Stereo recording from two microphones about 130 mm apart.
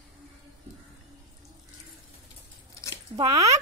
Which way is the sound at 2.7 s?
25° left (ahead or behind).